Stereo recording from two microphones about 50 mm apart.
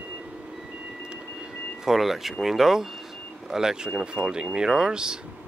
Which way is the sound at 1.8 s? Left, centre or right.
Centre.